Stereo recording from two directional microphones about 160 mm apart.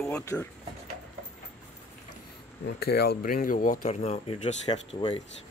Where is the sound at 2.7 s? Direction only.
85° left; by 4.0 s 55° left (ahead or behind).